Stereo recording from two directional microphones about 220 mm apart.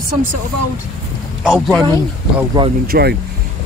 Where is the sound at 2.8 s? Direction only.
45° right (ahead or behind).